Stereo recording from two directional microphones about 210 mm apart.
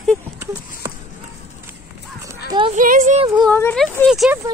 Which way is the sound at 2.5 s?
25° right (ahead or behind).